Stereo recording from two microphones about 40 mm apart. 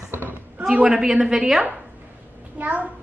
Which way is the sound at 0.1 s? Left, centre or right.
Right.